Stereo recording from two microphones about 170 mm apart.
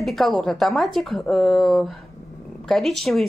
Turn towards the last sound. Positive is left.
turn(degrees=0)  # may be behind; listen again after turning